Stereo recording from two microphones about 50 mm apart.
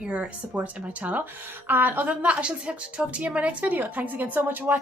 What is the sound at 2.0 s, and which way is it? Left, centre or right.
A woman's voice, right.